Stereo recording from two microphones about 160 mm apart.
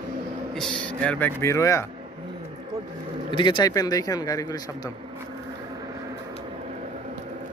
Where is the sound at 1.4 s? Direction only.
20° left (ahead or behind).